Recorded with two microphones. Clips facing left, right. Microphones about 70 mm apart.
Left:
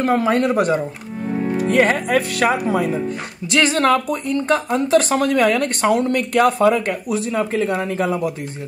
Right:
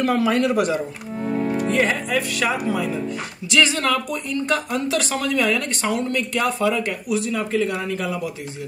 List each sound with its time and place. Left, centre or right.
0.0 s speech: left
1.2 s music: centre
1.7 s speech: left